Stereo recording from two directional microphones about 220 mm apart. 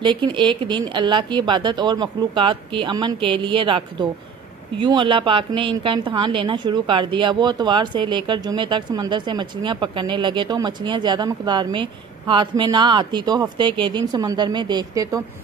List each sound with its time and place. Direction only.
0.0 s a woman's voice: 20° right (ahead or behind)